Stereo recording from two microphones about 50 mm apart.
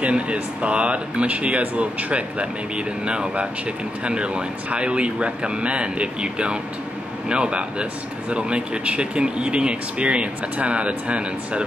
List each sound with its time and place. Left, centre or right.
0.0 s speech: right